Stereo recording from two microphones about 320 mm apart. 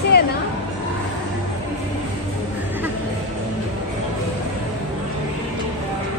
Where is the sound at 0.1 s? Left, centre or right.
Left.